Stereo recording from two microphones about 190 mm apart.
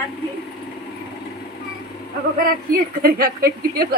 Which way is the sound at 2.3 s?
50° right (ahead or behind).